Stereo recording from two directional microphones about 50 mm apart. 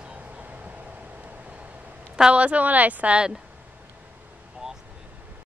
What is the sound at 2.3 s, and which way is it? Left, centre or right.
Speech, right.